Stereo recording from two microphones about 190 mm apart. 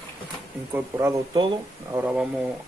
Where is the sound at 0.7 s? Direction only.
15° right (ahead or behind).